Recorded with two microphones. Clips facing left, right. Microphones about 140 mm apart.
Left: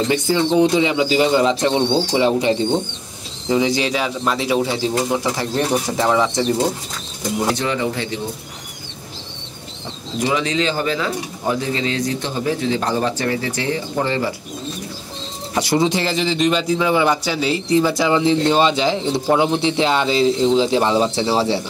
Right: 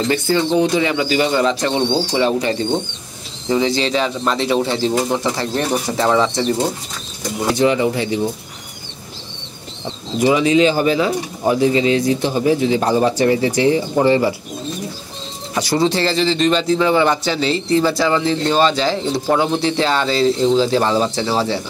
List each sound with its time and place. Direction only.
0.1 s a man's voice: 15° left (ahead or behind)
3.4 s a man's voice: 15° left (ahead or behind)
7.5 s speech: 15° right (ahead or behind)
10.1 s speech: 10° right (ahead or behind)
15.5 s a man's voice: 20° left (ahead or behind)